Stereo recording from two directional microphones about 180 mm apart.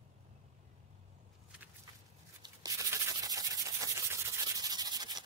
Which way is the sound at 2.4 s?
20° right (ahead or behind).